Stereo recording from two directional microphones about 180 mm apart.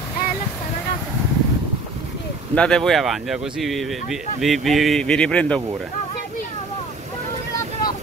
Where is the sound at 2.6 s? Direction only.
5° left (ahead or behind).